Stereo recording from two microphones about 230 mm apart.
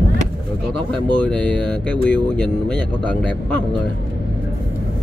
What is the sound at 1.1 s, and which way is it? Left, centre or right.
Speech, centre.